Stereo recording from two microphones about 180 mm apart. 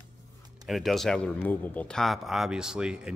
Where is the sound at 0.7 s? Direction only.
Centre (ahead or behind).